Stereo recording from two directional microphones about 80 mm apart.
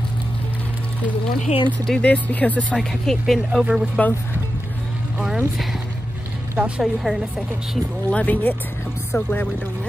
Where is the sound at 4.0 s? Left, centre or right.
Centre.